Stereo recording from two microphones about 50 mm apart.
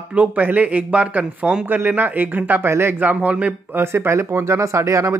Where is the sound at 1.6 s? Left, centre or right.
Right.